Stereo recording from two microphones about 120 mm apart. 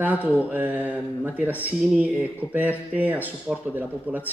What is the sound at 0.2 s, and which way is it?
Mantra, 15° left (ahead or behind).